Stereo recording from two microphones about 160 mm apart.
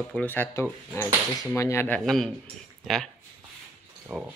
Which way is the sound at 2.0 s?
Centre (ahead or behind).